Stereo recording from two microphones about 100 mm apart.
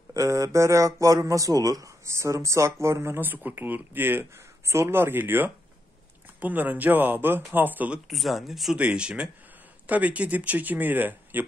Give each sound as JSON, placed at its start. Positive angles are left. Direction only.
{"t": 0.1, "sound": "speech", "side_deg": -35}
{"t": 8.1, "sound": "speech", "side_deg": 0}